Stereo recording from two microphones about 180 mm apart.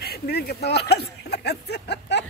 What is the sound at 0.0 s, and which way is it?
Speech, 60° left (ahead or behind).